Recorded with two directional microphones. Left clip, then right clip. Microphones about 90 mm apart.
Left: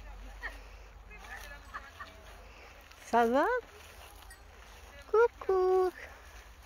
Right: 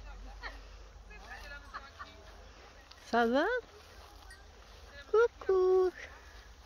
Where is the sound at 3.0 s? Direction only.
30° right (ahead or behind).